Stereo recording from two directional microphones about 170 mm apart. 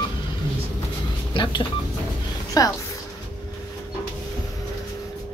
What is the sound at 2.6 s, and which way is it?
Speech, 20° left (ahead or behind).